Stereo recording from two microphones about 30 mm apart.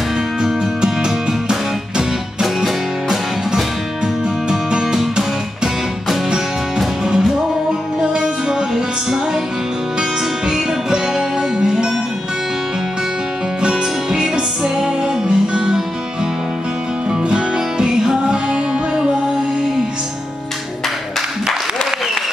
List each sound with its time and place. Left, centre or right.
0.4 s music: right
2.4 s music: centre
4.5 s music: right
8.0 s music: right
10.5 s music: centre
13.7 s music: centre
17.3 s music: right